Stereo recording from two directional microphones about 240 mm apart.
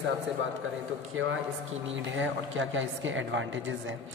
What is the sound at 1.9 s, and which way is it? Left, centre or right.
A man's voice, right.